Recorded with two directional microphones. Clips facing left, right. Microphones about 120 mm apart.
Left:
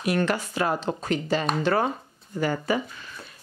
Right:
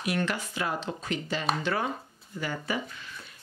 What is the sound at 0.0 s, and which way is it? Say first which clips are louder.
Speech: left 5 dB; 45° left (ahead or behind).